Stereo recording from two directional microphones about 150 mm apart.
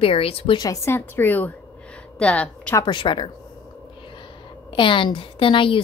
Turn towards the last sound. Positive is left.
turn(degrees=35)  # may be behind; listen again after turning